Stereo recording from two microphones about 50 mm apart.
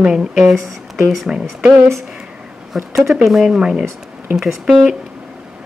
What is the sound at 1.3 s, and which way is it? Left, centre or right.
Speech, centre.